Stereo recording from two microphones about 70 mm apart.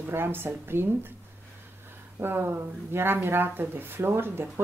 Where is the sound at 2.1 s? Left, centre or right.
Right.